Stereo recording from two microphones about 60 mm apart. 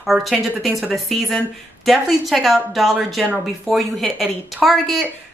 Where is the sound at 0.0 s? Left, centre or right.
Centre.